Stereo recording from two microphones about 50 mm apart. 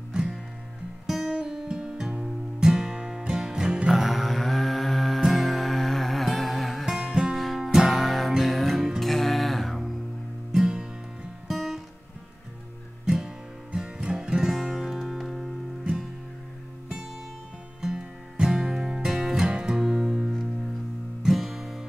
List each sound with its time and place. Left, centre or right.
0.1 s music: centre
3.9 s music: centre
10.5 s music: centre
13.0 s music: centre
17.8 s music: centre